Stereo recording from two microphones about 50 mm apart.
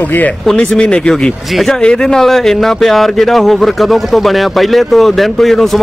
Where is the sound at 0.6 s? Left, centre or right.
Left.